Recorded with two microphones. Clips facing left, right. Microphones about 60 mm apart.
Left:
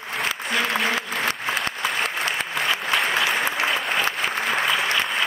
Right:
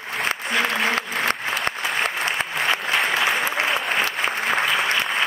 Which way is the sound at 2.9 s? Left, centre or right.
Centre.